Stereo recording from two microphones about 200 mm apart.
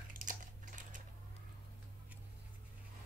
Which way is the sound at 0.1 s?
40° right (ahead or behind).